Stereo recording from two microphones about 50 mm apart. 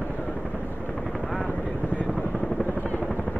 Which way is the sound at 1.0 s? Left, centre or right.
Centre.